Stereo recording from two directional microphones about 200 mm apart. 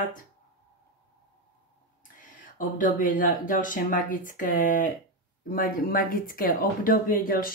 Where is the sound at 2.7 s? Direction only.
40° left (ahead or behind).